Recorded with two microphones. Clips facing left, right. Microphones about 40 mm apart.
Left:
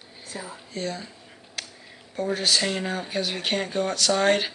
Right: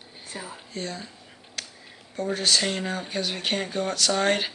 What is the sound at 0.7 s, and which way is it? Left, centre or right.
Speech, centre.